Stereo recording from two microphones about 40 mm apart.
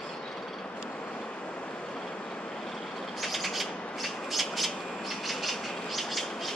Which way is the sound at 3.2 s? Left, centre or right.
Centre.